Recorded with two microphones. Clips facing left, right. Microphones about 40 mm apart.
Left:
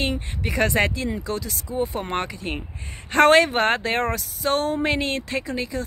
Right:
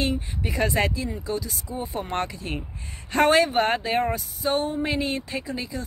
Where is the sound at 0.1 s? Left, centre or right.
Left.